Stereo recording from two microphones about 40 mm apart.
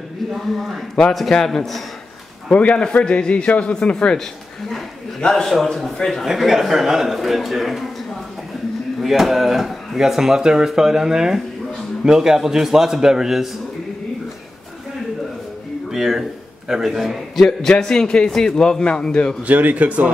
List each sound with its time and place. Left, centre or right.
1.3 s a man's voice: centre
2.5 s a man's voice: left
3.9 s a man's voice: centre
5.3 s a man's voice: centre
5.9 s a man's voice: centre
6.2 s a man's voice: centre
9.0 s speech: centre
15.9 s a man's voice: centre
17.4 s a man's voice: centre
19.5 s speech: right